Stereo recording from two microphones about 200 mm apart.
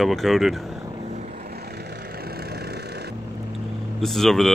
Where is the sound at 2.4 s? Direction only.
55° right (ahead or behind).